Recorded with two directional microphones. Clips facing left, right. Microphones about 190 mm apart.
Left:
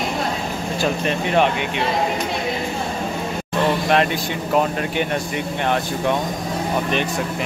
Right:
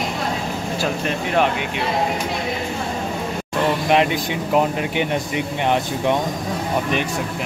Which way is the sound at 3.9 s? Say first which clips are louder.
Right 1 dB; 15° right (ahead or behind).